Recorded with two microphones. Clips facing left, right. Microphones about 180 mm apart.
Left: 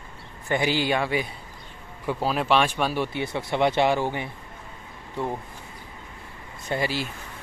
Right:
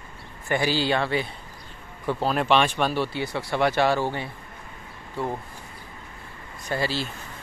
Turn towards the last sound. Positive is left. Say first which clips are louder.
# even
turn(degrees=15)  # may be behind; listen again after turning